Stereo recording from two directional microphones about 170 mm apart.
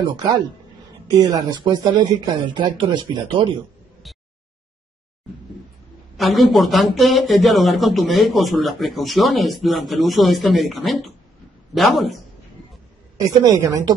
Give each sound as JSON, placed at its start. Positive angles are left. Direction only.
{"t": 0.0, "sound": "speech", "side_deg": -25}
{"t": 6.1, "sound": "a man's voice", "side_deg": 0}
{"t": 13.4, "sound": "speech", "side_deg": -20}